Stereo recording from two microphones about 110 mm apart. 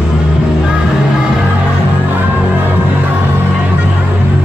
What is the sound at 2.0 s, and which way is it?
Music, 15° right (ahead or behind).